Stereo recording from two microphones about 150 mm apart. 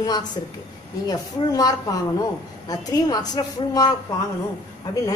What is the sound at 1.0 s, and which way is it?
A woman's voice, 25° left (ahead or behind).